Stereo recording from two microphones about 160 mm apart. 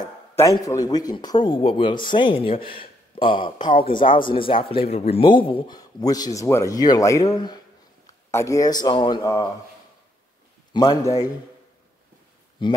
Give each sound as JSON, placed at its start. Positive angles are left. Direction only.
{"t": 0.0, "sound": "speech", "side_deg": 20}
{"t": 10.7, "sound": "speech", "side_deg": 25}
{"t": 12.6, "sound": "speech", "side_deg": 30}